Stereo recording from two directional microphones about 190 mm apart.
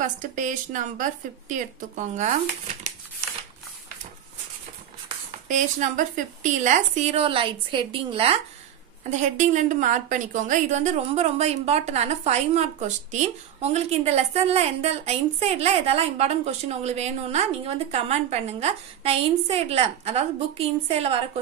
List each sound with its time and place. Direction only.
0.0 s a woman's voice: 40° right (ahead or behind)
5.5 s a woman's voice: 40° right (ahead or behind)
9.0 s a woman's voice: 40° right (ahead or behind)